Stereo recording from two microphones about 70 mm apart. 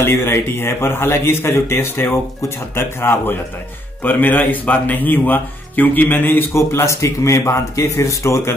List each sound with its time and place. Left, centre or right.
0.0 s a man's voice: left